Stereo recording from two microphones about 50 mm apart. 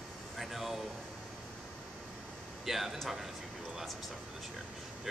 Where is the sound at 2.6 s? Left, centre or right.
Centre.